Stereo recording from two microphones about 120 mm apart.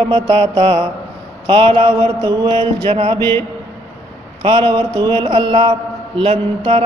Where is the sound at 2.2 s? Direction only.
35° right (ahead or behind); by 3.2 s 50° right (ahead or behind).